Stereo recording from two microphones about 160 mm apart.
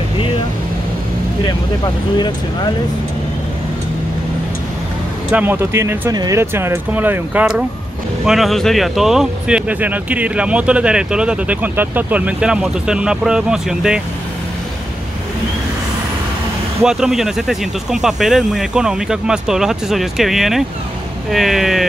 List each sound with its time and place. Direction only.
2.1 s speech: 30° left (ahead or behind)
5.3 s speech: 10° right (ahead or behind)
16.8 s speech: 5° right (ahead or behind)